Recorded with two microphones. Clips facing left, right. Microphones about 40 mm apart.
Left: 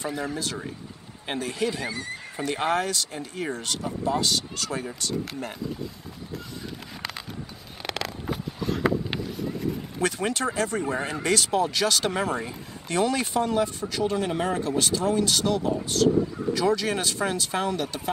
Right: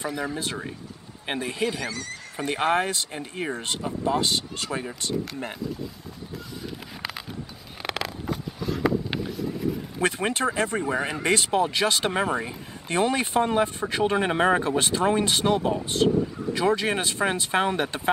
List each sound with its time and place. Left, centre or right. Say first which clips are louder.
1.3 s speech: even; right
1.8 s speech: even; centre
2.4 s speech: right 2 dB; right
7.8 s a sound: right 1 dB; centre
9.3 s vehicle: right 2 dB; centre
10.0 s speech: right 2 dB; right